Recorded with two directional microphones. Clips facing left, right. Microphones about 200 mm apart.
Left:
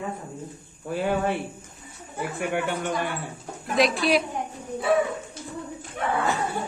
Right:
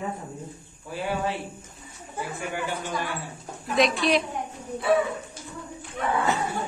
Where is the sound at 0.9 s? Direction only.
50° left (ahead or behind).